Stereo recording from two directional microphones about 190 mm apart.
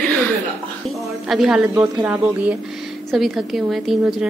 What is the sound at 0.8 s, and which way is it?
A woman's voice, centre (ahead or behind).